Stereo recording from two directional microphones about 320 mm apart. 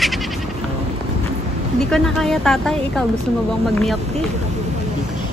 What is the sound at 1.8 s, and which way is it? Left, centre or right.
Speech, centre.